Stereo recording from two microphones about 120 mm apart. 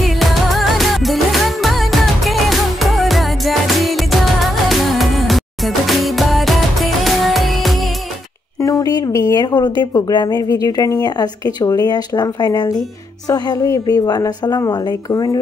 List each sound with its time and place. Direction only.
0.2 s music: centre (ahead or behind)
8.5 s a woman's voice: 30° left (ahead or behind)